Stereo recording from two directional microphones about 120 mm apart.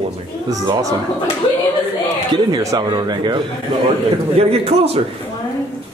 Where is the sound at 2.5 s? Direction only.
30° right (ahead or behind).